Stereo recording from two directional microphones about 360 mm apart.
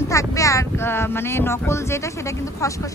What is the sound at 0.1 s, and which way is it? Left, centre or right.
Speech, centre.